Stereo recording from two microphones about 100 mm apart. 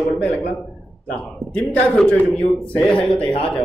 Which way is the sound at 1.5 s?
15° left (ahead or behind).